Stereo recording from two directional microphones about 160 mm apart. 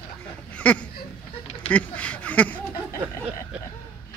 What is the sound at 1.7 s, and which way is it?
Speech, 10° left (ahead or behind).